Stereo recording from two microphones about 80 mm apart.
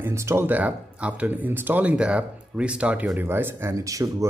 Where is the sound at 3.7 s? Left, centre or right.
Right.